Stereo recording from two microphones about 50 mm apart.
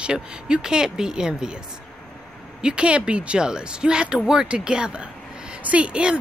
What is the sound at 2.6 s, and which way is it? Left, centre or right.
Speech, centre.